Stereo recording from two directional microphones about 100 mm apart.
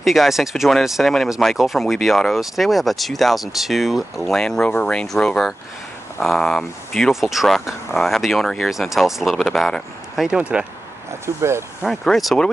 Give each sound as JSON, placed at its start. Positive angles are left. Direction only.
{"t": 0.0, "sound": "speech", "side_deg": 0}
{"t": 10.2, "sound": "speech", "side_deg": -10}
{"t": 11.2, "sound": "speech", "side_deg": -25}
{"t": 11.8, "sound": "speech", "side_deg": 0}